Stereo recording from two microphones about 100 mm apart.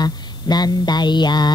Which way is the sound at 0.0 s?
45° left (ahead or behind).